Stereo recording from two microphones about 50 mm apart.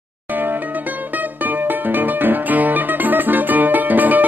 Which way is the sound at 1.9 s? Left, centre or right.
Right.